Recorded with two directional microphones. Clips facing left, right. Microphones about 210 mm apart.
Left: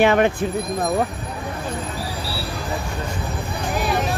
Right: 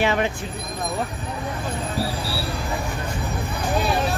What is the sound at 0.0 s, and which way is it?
Speech, 55° left (ahead or behind).